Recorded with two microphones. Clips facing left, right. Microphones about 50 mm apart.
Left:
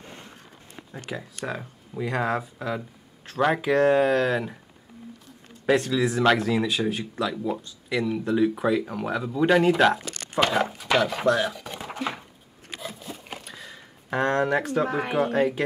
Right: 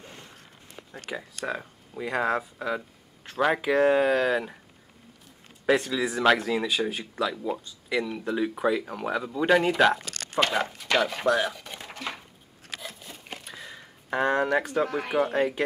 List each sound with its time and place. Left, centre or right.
0.0 s a sound: centre
0.9 s speech: centre
5.7 s speech: centre
11.9 s a sound: centre
14.9 s speech: centre
15.1 s speech: centre